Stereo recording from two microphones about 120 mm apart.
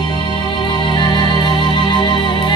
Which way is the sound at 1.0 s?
40° left (ahead or behind).